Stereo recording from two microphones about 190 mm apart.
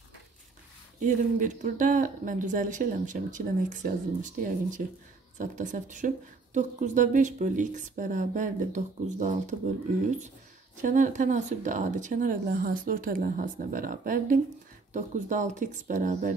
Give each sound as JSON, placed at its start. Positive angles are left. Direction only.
{"t": 1.0, "sound": "speech", "side_deg": -40}
{"t": 10.8, "sound": "speech", "side_deg": -45}